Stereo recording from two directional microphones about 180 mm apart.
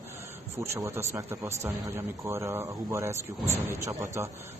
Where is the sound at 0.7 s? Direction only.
15° right (ahead or behind).